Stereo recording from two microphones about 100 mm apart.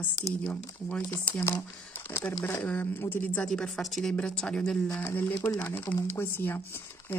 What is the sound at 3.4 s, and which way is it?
Speech, 5° left (ahead or behind).